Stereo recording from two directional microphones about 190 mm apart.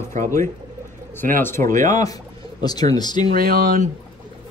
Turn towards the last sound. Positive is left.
turn(degrees=-50)  # may be behind; listen again after turning